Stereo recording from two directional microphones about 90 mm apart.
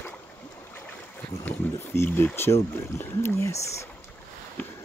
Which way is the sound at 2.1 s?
20° left (ahead or behind).